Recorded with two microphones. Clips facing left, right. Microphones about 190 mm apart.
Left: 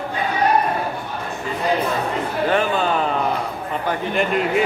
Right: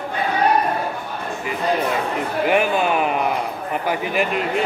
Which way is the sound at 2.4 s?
10° right (ahead or behind).